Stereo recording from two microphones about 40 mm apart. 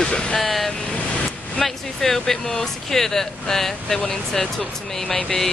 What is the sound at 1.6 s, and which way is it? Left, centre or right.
Speech, centre.